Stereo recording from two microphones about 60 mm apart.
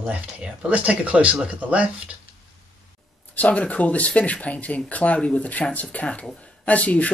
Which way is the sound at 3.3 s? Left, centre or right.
Left.